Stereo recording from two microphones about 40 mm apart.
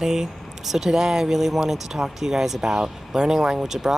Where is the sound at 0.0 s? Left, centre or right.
Centre.